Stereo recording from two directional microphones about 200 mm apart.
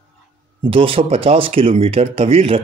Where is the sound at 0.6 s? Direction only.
25° right (ahead or behind).